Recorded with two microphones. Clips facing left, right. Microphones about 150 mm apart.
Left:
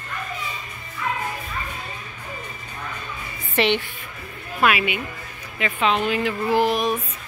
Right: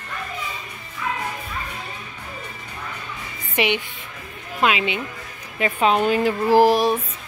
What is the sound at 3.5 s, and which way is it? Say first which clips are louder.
A woman's voice: left 1 dB; 15° right (ahead or behind).